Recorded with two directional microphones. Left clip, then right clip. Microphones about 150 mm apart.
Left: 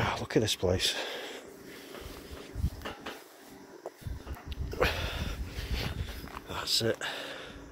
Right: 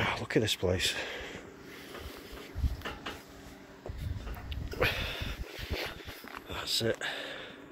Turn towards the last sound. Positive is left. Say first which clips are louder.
# even
turn(degrees=15)  # may be behind; listen again after turning